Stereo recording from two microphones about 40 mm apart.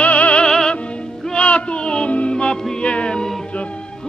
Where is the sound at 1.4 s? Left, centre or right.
Left.